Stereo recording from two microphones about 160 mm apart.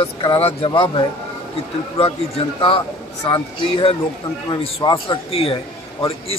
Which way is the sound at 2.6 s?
35° left (ahead or behind).